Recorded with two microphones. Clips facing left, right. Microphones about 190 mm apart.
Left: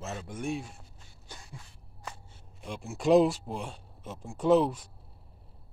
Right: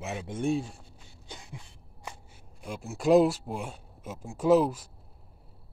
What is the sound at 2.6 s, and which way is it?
Speech, centre (ahead or behind).